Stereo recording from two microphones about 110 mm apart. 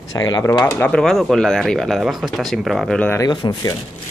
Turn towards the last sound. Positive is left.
turn(degrees=45)  # may be behind; listen again after turning